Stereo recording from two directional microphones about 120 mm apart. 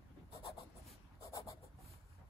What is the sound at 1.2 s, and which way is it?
Writing, 25° left (ahead or behind).